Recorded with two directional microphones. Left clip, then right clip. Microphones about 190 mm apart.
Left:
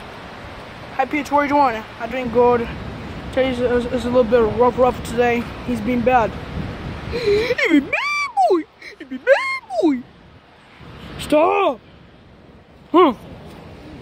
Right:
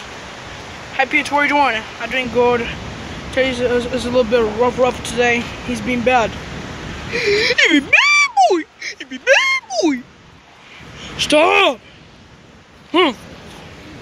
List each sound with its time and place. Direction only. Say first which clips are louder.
0.9 s speech: right 3 dB; 10° left (ahead or behind)
7.2 s frog: right 4 dB; 10° left (ahead or behind)
8.9 s frog: right 2 dB; 20° left (ahead or behind)
11.1 s speech: right 4 dB; 10° left (ahead or behind)
12.9 s speech: left 1 dB; 20° left (ahead or behind)